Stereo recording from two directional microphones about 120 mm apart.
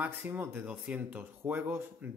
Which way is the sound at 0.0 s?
15° right (ahead or behind).